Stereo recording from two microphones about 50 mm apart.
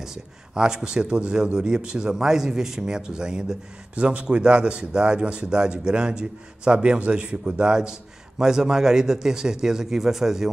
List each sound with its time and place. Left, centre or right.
0.0 s speech: centre